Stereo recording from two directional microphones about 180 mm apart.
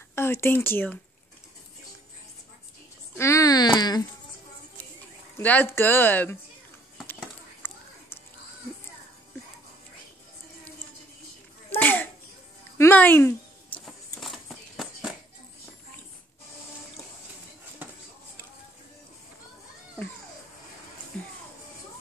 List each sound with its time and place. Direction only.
0.1 s speech: 15° left (ahead or behind)
3.2 s speech: 15° left (ahead or behind)
5.4 s speech: 10° left (ahead or behind)
7.6 s children playing: 10° left (ahead or behind)
11.7 s a sound: 10° left (ahead or behind)
13.8 s a sound: centre (ahead or behind)
21.1 s music: 5° left (ahead or behind)